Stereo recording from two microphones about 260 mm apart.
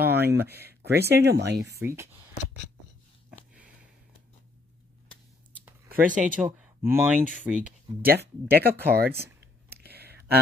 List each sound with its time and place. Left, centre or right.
0.3 s speech: centre
0.6 s speech: right
1.7 s speech: centre
3.3 s sniff: centre
5.9 s speech: right
6.4 s speech: centre
8.0 s a sound: right